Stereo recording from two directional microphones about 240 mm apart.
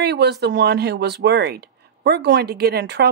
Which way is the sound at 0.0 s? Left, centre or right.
Right.